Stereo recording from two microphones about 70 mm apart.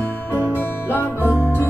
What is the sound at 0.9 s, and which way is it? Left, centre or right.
Music, left.